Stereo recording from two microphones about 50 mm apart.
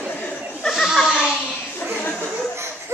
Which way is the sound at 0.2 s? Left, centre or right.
Left.